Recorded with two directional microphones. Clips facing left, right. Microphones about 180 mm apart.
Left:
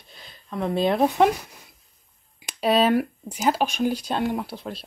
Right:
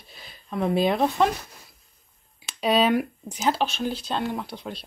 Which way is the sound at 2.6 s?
Centre (ahead or behind).